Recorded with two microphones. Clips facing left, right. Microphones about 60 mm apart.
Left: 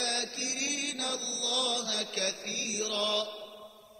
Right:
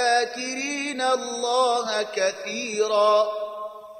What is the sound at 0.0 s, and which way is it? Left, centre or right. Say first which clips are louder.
Mantra: right 14 dB; right.